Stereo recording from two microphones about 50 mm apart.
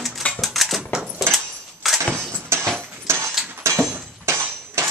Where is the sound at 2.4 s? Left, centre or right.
Right.